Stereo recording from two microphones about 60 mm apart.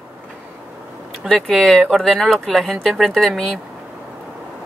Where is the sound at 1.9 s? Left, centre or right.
Centre.